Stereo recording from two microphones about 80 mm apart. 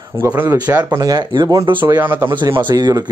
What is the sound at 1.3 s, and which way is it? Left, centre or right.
Speech, right.